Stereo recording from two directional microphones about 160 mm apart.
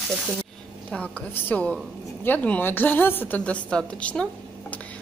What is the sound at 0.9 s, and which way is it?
A woman's voice, 10° left (ahead or behind).